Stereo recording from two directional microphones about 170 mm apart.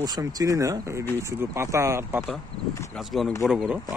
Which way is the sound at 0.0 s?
20° right (ahead or behind).